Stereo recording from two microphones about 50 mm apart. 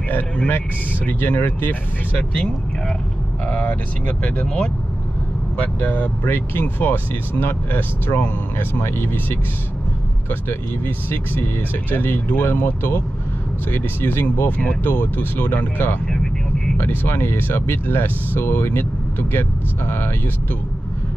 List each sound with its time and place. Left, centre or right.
1.0 s speech: left
3.4 s speech: left
5.6 s speech: left
6.2 s speech: left
11.1 s speech: left
14.8 s speech: left
16.1 s vehicle: centre
16.7 s speech: left